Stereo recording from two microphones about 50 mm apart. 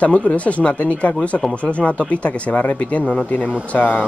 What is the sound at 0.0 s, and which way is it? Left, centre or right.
Speech, left.